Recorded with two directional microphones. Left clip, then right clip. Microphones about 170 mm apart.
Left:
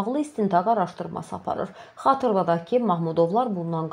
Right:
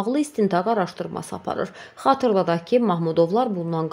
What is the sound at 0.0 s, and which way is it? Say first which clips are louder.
A woman's voice: right 3 dB; 20° right (ahead or behind).